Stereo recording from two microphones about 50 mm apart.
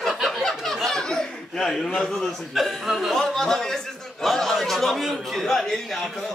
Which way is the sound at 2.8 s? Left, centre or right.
Centre.